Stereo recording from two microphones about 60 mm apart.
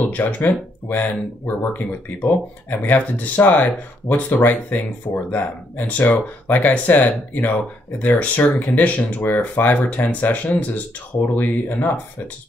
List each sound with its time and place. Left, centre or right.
0.1 s speech: left
2.2 s speech: left
4.1 s speech: left
4.4 s speech: left